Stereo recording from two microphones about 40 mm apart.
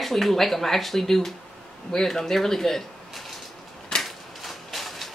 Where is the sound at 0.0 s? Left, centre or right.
Centre.